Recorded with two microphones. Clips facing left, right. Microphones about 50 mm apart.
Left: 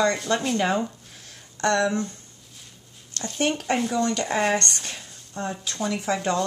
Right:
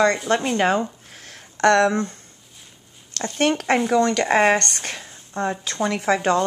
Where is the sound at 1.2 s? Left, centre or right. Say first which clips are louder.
Right 7 dB; right.